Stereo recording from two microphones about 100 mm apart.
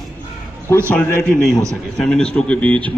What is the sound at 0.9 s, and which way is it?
Speech, 5° left (ahead or behind).